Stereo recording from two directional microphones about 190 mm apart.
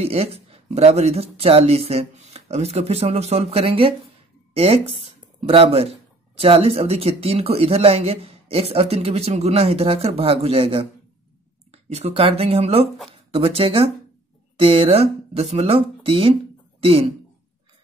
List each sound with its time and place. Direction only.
0.0 s speech: 30° right (ahead or behind)